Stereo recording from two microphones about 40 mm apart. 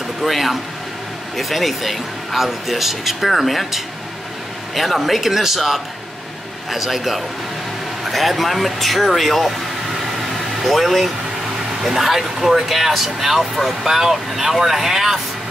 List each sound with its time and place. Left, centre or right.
0.2 s speech: centre
10.6 s speech: centre